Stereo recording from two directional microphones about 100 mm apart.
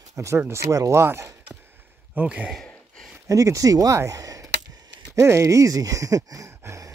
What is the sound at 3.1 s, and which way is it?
Speech, 35° right (ahead or behind).